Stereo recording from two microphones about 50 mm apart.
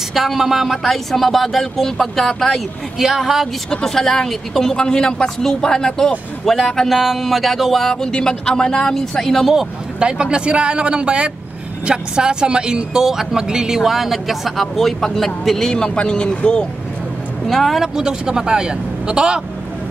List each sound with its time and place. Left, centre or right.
0.1 s speech: centre
3.8 s a woman's voice: centre
7.9 s a woman's voice: centre
9.9 s speech: centre
17.5 s speech: centre
17.9 s a man's voice: centre